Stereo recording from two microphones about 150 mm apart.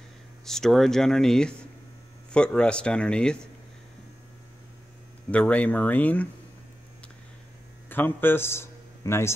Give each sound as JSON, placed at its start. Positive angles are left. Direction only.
{"t": 0.5, "sound": "speech", "side_deg": 0}
{"t": 5.3, "sound": "speech", "side_deg": 10}
{"t": 7.9, "sound": "a man's voice", "side_deg": 15}